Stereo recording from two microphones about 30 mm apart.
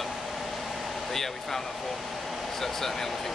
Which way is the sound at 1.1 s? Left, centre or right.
Centre.